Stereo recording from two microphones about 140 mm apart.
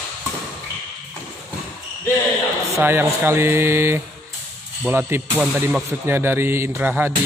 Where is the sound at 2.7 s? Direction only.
15° right (ahead or behind).